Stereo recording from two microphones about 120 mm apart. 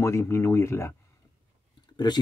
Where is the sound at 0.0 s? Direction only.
20° left (ahead or behind).